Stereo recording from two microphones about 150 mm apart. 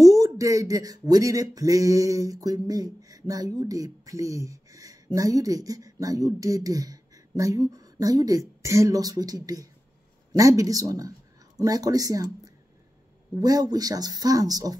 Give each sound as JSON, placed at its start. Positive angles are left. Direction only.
{"t": 0.0, "sound": "speech", "side_deg": -20}